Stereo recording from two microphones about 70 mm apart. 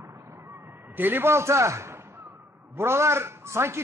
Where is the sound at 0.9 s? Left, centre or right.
Right.